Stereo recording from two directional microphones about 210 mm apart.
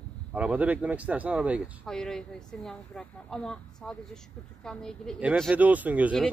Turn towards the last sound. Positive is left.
turn(degrees=-5)  # may be behind; listen again after turning